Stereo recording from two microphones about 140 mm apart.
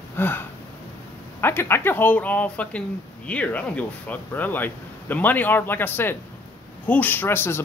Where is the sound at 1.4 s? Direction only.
15° left (ahead or behind).